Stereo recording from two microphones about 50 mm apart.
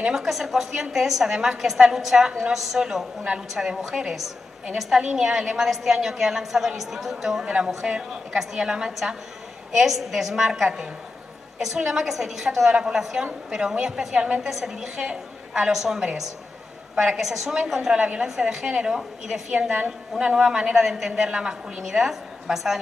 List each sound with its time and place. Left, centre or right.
0.1 s a woman's voice: centre
7.4 s a woman's voice: right
14.5 s a woman's voice: centre
17.9 s a woman's voice: right
18.2 s a woman's voice: centre
19.5 s a woman's voice: centre